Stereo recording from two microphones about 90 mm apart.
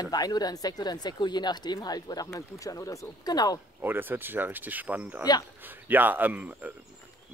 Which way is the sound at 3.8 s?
20° right (ahead or behind).